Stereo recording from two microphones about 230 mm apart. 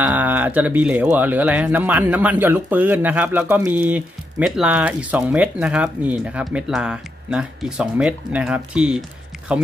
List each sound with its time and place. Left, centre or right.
0.0 s speech: centre